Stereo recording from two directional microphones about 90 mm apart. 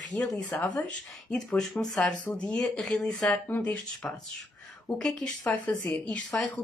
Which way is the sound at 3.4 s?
15° left (ahead or behind).